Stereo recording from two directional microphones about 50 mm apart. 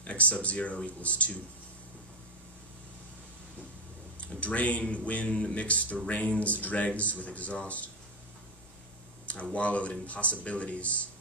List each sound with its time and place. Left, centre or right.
0.0 s speech: left
4.4 s speech: left
9.2 s speech: left